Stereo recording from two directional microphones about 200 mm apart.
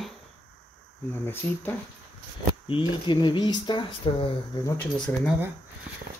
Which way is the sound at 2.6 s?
25° left (ahead or behind).